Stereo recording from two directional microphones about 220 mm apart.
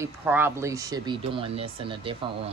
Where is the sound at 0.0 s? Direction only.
10° right (ahead or behind).